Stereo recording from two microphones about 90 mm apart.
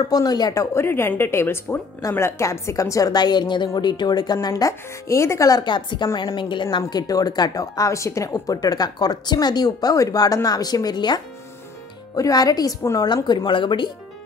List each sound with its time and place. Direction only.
0.1 s speech: 50° left (ahead or behind)
0.7 s a woman's voice: 25° left (ahead or behind)
5.6 s speech: 55° left (ahead or behind)
6.8 s speech: 45° left (ahead or behind)
13.1 s speech: 55° left (ahead or behind)